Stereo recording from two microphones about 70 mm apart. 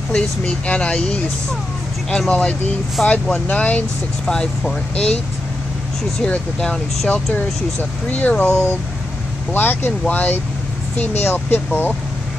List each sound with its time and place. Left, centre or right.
0.1 s speech: centre
6.6 s speech: centre
8.1 s speech: centre